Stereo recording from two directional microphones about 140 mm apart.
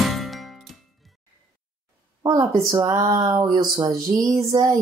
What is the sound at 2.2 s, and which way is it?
Speech, 25° right (ahead or behind).